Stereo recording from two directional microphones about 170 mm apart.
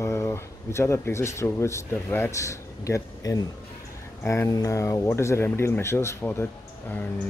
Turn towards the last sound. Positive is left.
turn(degrees=10)  # may be behind; listen again after turning